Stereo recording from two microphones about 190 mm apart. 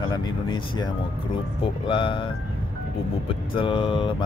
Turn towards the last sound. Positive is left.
turn(degrees=25)  # may be behind; listen again after turning